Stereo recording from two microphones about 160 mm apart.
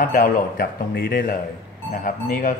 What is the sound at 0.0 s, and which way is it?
Speech, 60° left (ahead or behind).